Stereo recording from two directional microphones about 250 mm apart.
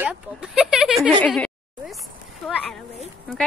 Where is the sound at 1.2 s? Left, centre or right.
Centre.